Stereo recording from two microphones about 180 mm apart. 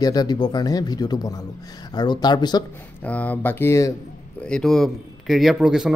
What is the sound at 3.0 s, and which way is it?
Speech, 10° left (ahead or behind).